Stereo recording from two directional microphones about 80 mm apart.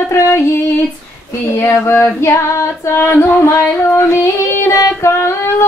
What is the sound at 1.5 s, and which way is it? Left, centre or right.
Female singing, left.